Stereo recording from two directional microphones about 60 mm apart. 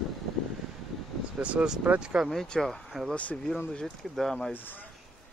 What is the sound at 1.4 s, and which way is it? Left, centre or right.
Speech, centre.